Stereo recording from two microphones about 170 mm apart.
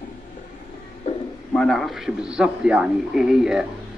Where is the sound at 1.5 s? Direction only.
5° left (ahead or behind).